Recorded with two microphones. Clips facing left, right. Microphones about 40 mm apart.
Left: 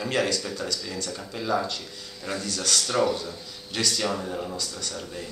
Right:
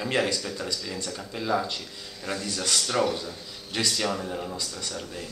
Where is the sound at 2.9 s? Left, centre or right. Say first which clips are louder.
Left 2 dB; centre.